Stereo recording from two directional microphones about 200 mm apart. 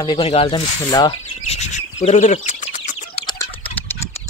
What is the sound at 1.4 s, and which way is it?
Speech, 35° left (ahead or behind).